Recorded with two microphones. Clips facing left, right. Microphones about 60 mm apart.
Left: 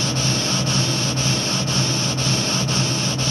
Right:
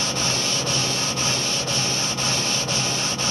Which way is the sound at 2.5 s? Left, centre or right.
Left.